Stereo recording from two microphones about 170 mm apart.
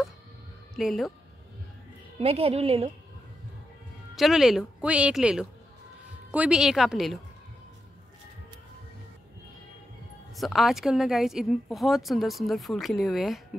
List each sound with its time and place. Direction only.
0.7 s speech: centre (ahead or behind)
2.1 s a woman's voice: 35° right (ahead or behind)
4.1 s speech: centre (ahead or behind)
10.3 s speech: centre (ahead or behind)